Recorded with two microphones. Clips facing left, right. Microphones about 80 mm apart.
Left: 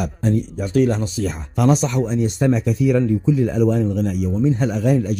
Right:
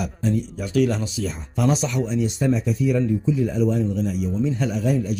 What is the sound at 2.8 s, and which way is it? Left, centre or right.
Speech, left.